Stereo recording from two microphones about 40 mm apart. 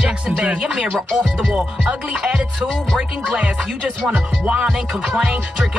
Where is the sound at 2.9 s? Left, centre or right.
Left.